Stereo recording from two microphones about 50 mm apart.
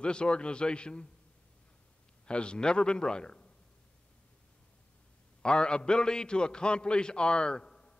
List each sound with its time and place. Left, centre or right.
0.0 s a man's voice: centre
2.2 s a man's voice: centre
5.4 s a man's voice: centre